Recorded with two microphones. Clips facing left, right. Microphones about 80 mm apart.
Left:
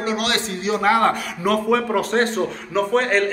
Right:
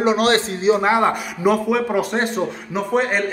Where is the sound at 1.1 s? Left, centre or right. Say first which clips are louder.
Right 2 dB; centre.